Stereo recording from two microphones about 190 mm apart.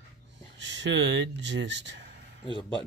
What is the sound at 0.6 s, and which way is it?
Speech, 70° right (ahead or behind).